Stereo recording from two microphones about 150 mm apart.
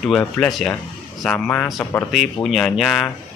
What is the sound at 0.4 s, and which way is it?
Speech, 5° left (ahead or behind).